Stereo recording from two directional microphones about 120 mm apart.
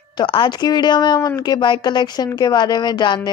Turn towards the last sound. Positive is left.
turn(degrees=40)  # may be behind; listen again after turning